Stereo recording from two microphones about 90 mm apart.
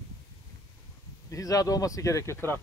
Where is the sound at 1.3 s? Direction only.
40° left (ahead or behind).